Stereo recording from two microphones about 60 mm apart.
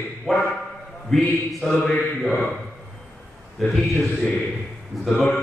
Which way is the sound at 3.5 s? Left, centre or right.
Centre.